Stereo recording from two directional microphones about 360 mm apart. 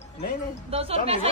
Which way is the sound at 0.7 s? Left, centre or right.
Centre.